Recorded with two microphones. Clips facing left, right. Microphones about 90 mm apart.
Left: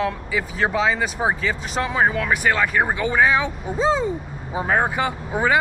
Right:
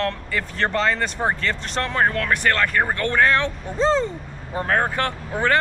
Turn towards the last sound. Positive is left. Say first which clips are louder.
# left 1 dB
turn(degrees=10)  # may be behind; listen again after turning